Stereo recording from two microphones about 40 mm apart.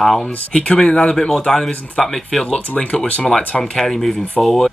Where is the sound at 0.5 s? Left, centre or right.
Left.